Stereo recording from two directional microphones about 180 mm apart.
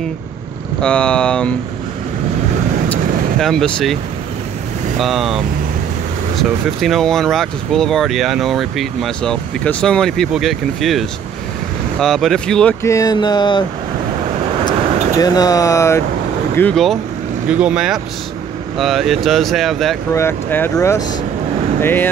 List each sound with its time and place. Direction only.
0.7 s speech: 5° left (ahead or behind)
2.9 s vehicle: centre (ahead or behind)
4.9 s speech: centre (ahead or behind)
6.8 s speech: centre (ahead or behind)
12.8 s speech: 20° left (ahead or behind)
15.1 s speech: 20° left (ahead or behind)
16.5 s speech: 5° left (ahead or behind)
20.1 s speech: 15° left (ahead or behind)